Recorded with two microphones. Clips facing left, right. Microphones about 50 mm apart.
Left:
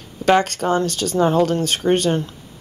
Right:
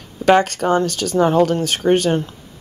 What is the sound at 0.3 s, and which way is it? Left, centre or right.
Speech, centre.